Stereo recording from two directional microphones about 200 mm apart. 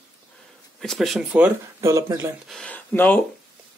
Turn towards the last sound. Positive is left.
turn(degrees=10)  # may be behind; listen again after turning